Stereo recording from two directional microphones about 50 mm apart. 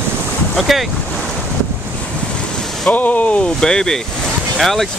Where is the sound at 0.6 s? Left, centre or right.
Centre.